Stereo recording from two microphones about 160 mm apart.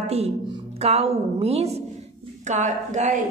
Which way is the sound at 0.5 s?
40° right (ahead or behind).